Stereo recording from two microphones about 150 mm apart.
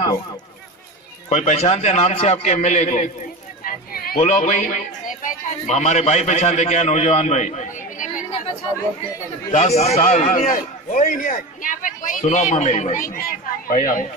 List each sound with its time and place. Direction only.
1.3 s a man's voice: 50° left (ahead or behind)
3.6 s a sound: 75° left (ahead or behind)
4.2 s a man's voice: 55° left (ahead or behind)
9.5 s a man's voice: 50° left (ahead or behind); by 14.0 s 65° left (ahead or behind)